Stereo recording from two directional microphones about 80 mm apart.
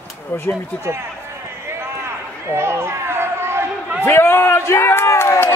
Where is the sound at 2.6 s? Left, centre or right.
Right.